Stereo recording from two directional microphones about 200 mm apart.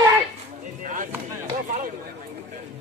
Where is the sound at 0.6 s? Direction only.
40° right (ahead or behind).